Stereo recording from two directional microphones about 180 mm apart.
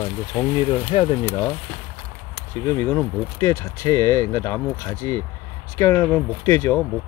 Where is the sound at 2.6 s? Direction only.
15° left (ahead or behind).